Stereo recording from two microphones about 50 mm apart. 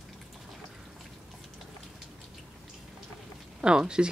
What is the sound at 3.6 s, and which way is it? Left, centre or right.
Speech, centre.